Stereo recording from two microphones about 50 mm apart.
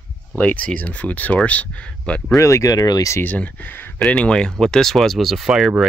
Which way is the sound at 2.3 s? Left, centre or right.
Left.